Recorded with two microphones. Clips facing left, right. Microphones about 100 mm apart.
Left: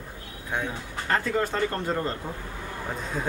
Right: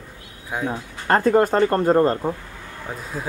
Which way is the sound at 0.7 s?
45° right (ahead or behind).